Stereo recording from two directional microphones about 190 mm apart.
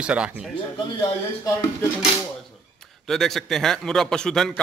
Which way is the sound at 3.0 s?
Centre (ahead or behind).